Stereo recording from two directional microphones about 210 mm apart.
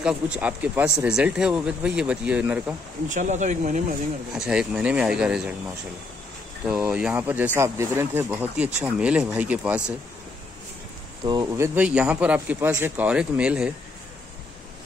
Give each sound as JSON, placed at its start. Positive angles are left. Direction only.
{"t": 0.0, "sound": "speech", "side_deg": -5}
{"t": 3.1, "sound": "speech", "side_deg": -35}
{"t": 4.3, "sound": "speech", "side_deg": -5}
{"t": 6.7, "sound": "speech", "side_deg": -5}
{"t": 11.2, "sound": "speech", "side_deg": -15}